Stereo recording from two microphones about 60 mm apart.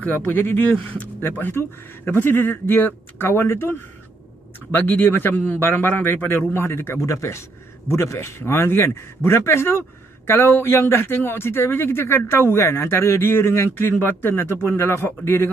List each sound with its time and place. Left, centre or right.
0.0 s a man's voice: left